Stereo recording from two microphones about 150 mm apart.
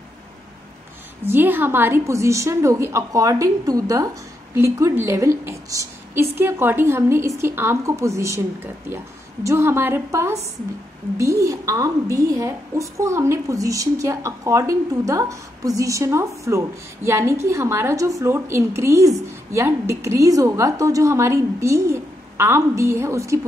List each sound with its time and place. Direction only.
1.2 s a woman's voice: 15° right (ahead or behind)